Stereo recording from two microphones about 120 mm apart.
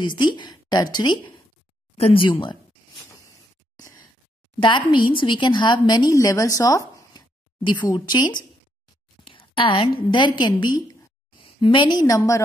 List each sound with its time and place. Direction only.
0.0 s a woman's voice: 40° left (ahead or behind)
2.0 s speech: 50° left (ahead or behind)
3.2 s a sound: 25° left (ahead or behind)
4.6 s a woman's voice: 45° left (ahead or behind); by 7.2 s 30° left (ahead or behind)
7.6 s a woman's voice: 40° left (ahead or behind)